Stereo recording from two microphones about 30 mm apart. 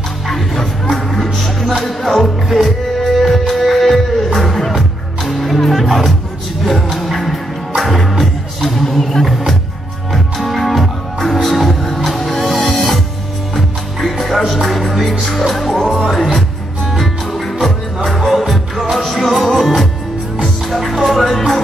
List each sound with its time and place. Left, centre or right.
0.3 s music: centre
5.7 s music: centre
6.6 s music: centre